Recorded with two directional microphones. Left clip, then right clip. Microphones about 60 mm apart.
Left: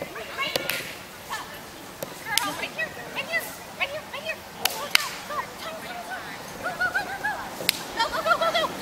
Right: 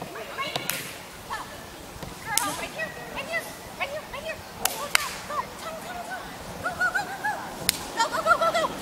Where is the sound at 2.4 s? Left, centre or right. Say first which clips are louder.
Left 2 dB; centre.